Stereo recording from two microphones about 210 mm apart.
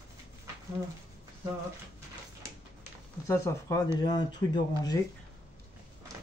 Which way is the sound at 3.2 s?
15° left (ahead or behind).